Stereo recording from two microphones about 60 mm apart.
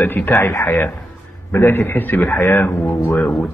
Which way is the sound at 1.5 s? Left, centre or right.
Left.